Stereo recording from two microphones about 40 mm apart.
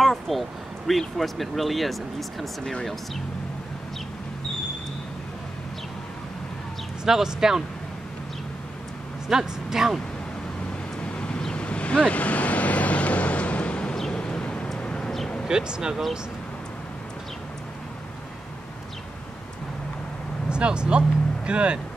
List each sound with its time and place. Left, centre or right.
0.0 s speech: centre
7.1 s speech: centre
9.3 s speech: centre
11.1 s vehicle: left
13.9 s a sound: centre
14.8 s vehicle: left
15.4 s speech: centre
20.4 s speech: right